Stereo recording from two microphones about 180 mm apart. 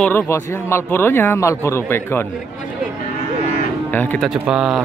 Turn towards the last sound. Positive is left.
turn(degrees=-5)  # may be behind; listen again after turning